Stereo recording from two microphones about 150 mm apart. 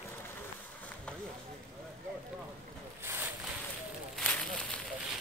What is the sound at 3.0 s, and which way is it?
Boat, 15° right (ahead or behind).